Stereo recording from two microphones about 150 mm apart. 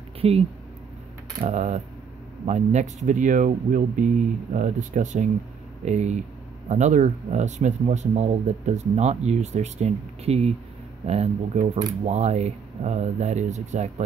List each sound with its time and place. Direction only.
0.2 s speech: 40° right (ahead or behind)
1.5 s speech: 50° right (ahead or behind)